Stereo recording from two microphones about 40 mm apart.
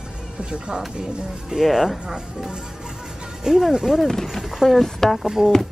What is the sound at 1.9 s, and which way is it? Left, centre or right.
Speech, centre.